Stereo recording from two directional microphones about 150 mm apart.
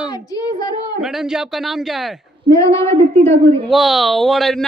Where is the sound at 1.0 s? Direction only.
5° right (ahead or behind).